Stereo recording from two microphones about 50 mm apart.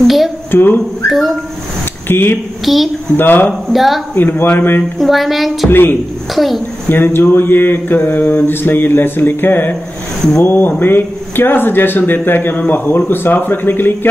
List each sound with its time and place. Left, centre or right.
0.0 s a sound: centre
0.5 s speech: left
1.0 s a sound: centre
2.0 s speech: left
2.6 s speech: centre
3.2 s speech: left
3.7 s speech: centre
4.2 s mantra: left
4.9 s speech: centre
5.7 s mantra: left
6.3 s speech: centre
6.9 s mantra: left